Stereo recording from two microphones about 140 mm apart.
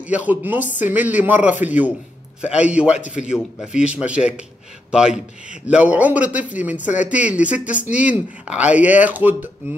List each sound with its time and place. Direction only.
0.0 s a man's voice: 10° right (ahead or behind)